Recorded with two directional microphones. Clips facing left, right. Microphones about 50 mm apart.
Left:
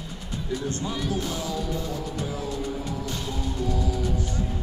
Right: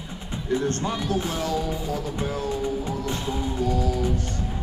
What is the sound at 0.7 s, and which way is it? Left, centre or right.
Music, right.